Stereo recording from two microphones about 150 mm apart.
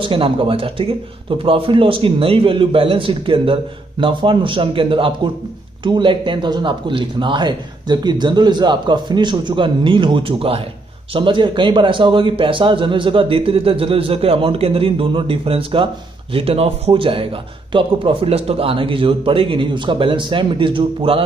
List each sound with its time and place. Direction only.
0.0 s speech: 35° right (ahead or behind)